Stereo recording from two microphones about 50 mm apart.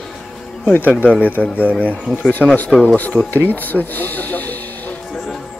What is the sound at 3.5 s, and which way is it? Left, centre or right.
Speech, left.